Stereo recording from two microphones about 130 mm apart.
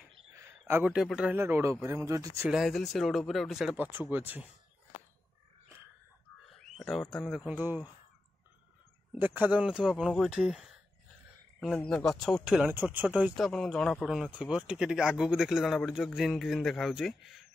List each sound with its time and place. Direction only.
0.4 s a sound: 20° right (ahead or behind)
0.9 s speech: 5° right (ahead or behind)
1.3 s speech: 20° right (ahead or behind)
2.5 s speech: centre (ahead or behind)
3.7 s speech: 15° right (ahead or behind)
6.8 s speech: 5° left (ahead or behind); by 7.9 s 15° right (ahead or behind)
9.1 s speech: 15° right (ahead or behind)
11.7 s speech: 10° left (ahead or behind); by 13.5 s 10° right (ahead or behind)
13.5 s speech: 5° left (ahead or behind)